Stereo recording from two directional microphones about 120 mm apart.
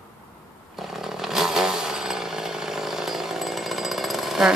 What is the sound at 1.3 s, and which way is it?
Vehicle, 5° right (ahead or behind).